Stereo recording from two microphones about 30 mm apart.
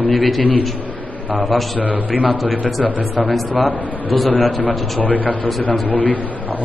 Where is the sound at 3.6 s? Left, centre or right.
Centre.